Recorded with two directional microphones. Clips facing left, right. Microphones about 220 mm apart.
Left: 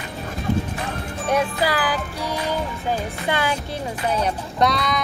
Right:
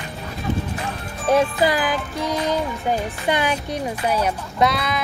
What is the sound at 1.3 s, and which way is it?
Music, 20° right (ahead or behind).